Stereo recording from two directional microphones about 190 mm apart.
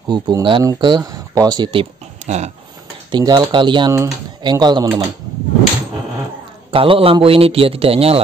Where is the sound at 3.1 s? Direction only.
20° right (ahead or behind).